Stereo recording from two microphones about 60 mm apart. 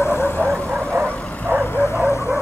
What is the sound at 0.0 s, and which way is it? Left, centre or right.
Vehicle, left.